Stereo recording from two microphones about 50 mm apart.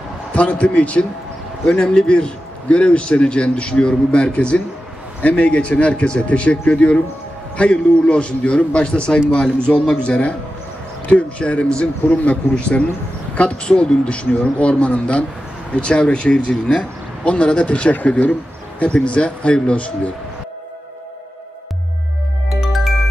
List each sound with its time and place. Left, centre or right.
0.3 s a man's voice: left